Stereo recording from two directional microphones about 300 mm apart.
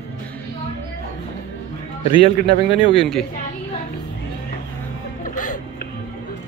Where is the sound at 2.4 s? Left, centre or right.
Centre.